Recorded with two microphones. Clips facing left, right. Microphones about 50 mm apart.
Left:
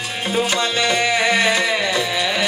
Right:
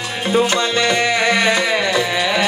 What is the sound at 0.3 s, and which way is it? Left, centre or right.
Music, centre.